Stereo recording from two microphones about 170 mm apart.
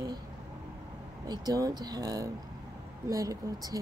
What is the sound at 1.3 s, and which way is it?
Speech, 20° right (ahead or behind).